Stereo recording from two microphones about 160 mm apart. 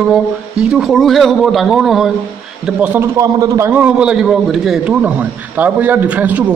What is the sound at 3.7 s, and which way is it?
A man's voice, 10° right (ahead or behind).